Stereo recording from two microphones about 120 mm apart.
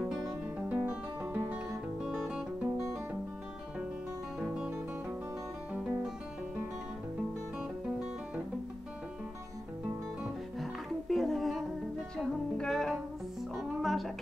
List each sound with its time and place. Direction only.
0.1 s music: 5° right (ahead or behind)
0.7 s guitar: 15° right (ahead or behind)
2.0 s music: 5° right (ahead or behind)
4.4 s music: 5° right (ahead or behind)
10.6 s music: centre (ahead or behind)